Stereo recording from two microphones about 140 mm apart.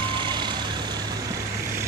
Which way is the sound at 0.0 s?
35° right (ahead or behind).